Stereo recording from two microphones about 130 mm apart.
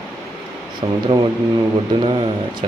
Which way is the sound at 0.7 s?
35° right (ahead or behind).